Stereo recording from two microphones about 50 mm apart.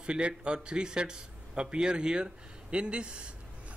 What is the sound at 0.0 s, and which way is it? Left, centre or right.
A man's voice, centre.